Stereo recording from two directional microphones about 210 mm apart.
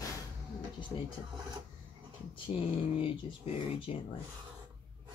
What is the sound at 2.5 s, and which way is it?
Speech, 25° left (ahead or behind).